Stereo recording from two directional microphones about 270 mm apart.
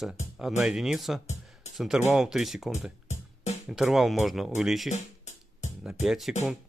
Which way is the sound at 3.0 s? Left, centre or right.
Left.